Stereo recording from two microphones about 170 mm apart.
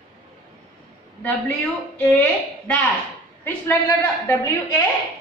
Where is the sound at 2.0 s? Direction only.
10° left (ahead or behind).